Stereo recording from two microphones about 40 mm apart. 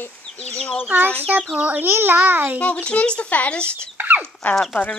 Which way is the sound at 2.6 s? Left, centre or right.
Left.